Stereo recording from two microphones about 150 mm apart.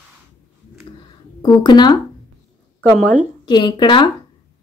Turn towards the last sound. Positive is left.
turn(degrees=30)  # may be behind; listen again after turning